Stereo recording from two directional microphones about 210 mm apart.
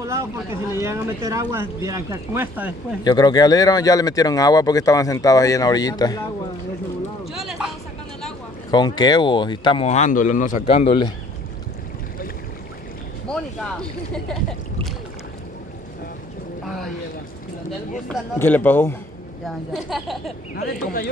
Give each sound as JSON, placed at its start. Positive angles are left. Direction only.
{"t": 0.0, "sound": "speech", "side_deg": -15}
{"t": 3.0, "sound": "speech", "side_deg": 20}
{"t": 7.3, "sound": "speech", "side_deg": 0}
{"t": 8.6, "sound": "speech", "side_deg": 20}
{"t": 13.3, "sound": "speech", "side_deg": 5}
{"t": 16.6, "sound": "boat", "side_deg": 0}
{"t": 18.4, "sound": "speech", "side_deg": 10}
{"t": 20.5, "sound": "speech", "side_deg": 45}